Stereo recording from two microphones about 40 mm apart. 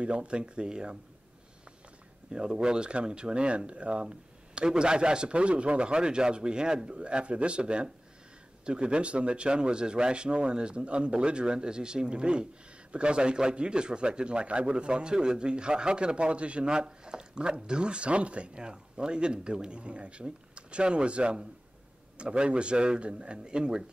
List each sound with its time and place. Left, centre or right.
0.0 s a man's voice: right
2.3 s a man's voice: right